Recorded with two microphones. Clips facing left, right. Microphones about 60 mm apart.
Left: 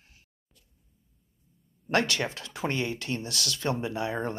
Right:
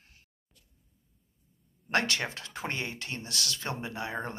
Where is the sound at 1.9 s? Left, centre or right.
Right.